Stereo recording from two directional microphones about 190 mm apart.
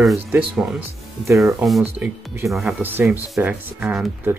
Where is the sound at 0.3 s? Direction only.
15° right (ahead or behind).